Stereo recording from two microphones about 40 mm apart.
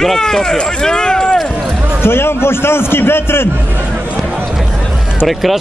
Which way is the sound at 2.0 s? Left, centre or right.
Left.